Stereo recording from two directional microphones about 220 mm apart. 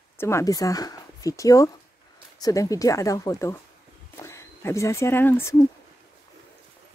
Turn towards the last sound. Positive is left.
turn(degrees=10)  # may be behind; listen again after turning